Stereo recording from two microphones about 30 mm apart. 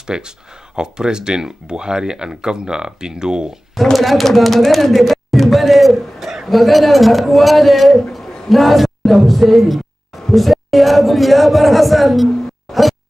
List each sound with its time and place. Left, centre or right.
0.1 s speech: right
3.9 s a man's voice: centre
12.7 s music: centre